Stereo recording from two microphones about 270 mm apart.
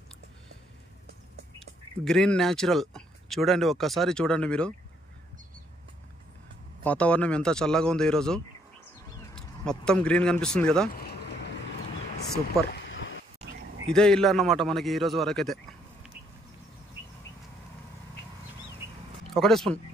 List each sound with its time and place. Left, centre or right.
1.6 s speech: centre
6.8 s a man's voice: centre
12.7 s a sound: left
13.9 s a man's voice: centre
19.3 s a man's voice: centre